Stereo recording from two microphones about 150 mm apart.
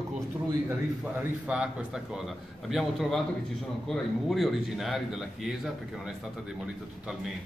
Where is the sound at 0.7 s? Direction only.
10° right (ahead or behind).